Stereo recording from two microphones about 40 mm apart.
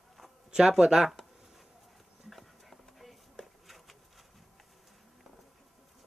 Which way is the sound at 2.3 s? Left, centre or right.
Centre.